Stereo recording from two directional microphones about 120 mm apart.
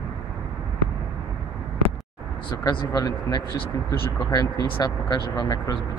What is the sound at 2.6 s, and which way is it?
Speech, 30° left (ahead or behind).